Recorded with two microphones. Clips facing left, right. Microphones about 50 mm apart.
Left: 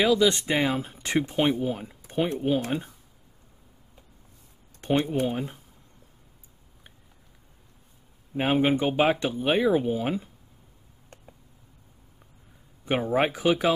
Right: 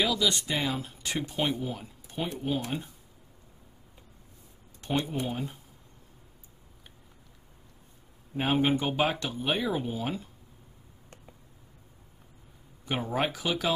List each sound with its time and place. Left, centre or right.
0.0 s speech: left
4.8 s speech: left
8.4 s speech: centre
12.8 s speech: left